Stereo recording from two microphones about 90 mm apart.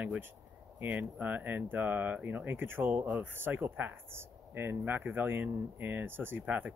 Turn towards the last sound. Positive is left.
turn(degrees=-20)  # may be behind; listen again after turning